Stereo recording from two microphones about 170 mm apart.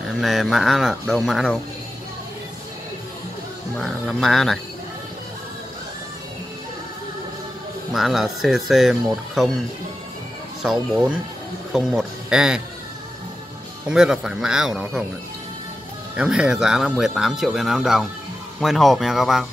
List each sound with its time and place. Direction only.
0.1 s speech: centre (ahead or behind)
3.7 s speech: centre (ahead or behind)
7.9 s speech: centre (ahead or behind)
10.6 s speech: centre (ahead or behind)
13.8 s speech: 5° right (ahead or behind)
16.2 s speech: 5° right (ahead or behind)